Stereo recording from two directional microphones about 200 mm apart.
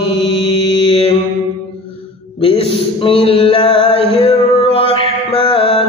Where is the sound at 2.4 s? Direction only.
25° left (ahead or behind).